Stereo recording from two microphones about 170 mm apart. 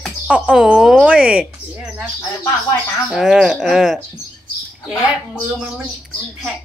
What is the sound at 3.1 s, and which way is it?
Speech, 5° right (ahead or behind).